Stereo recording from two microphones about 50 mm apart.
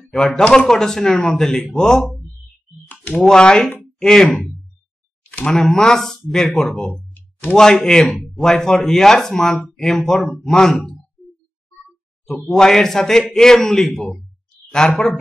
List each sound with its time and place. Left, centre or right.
0.0 s a man's voice: centre
3.3 s a man's voice: centre
5.6 s a man's voice: centre
7.2 s a sound: left
7.5 s a man's voice: centre
11.2 s music: centre
12.3 s a man's voice: centre
14.8 s a man's voice: centre